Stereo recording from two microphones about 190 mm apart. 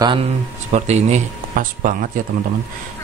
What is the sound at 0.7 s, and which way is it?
Speech, 35° right (ahead or behind).